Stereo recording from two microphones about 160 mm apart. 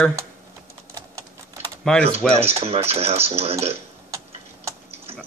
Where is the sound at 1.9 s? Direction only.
5° left (ahead or behind).